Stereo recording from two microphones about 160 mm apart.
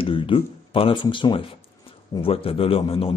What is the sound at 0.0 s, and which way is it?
A man's voice, 35° left (ahead or behind).